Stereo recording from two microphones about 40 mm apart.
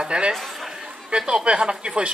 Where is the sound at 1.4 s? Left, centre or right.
Right.